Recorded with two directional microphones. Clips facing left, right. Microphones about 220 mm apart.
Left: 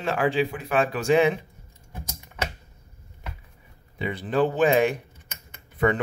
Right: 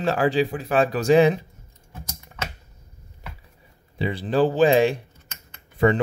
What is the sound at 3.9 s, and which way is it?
Speech, 30° right (ahead or behind).